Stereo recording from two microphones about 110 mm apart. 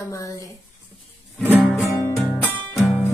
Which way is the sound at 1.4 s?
15° right (ahead or behind).